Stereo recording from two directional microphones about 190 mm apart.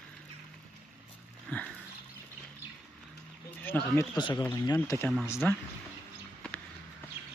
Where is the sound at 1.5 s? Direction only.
10° left (ahead or behind).